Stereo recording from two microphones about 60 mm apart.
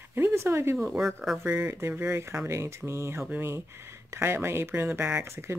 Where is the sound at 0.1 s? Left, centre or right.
Right.